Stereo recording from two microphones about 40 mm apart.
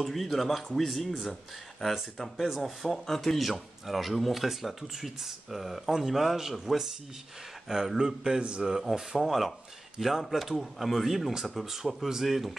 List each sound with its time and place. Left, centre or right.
0.0 s a man's voice: centre; by 8.6 s right
8.6 s speech: centre